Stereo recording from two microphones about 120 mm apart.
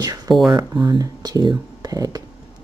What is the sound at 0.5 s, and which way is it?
Speech, 35° right (ahead or behind).